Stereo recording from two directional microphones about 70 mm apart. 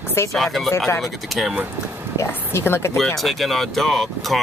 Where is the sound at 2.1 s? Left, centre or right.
Left.